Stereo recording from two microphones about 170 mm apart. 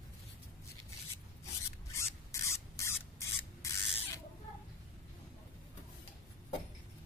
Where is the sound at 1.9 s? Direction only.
15° left (ahead or behind).